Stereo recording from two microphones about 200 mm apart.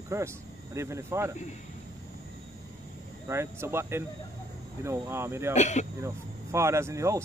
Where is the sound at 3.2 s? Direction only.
15° right (ahead or behind).